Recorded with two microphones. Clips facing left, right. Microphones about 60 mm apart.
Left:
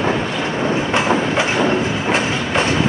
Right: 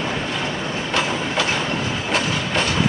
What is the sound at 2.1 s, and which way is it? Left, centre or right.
Train, left.